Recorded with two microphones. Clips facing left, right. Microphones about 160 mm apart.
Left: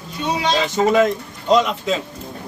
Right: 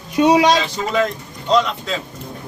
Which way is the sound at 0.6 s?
45° left (ahead or behind).